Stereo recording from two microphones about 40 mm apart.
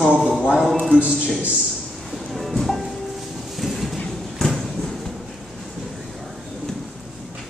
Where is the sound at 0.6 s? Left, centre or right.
Centre.